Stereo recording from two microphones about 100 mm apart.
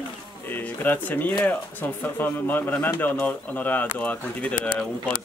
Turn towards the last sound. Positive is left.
turn(degrees=15)  # may be behind; listen again after turning